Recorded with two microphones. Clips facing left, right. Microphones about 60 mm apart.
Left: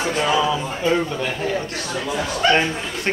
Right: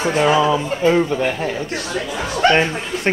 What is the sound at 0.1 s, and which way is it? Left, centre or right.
Speech, right.